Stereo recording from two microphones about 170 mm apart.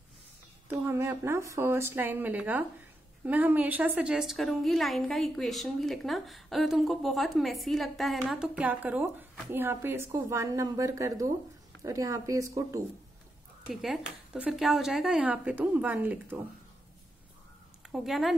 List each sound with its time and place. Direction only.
0.7 s a woman's voice: 15° right (ahead or behind)
13.7 s a woman's voice: centre (ahead or behind)
17.9 s a woman's voice: centre (ahead or behind)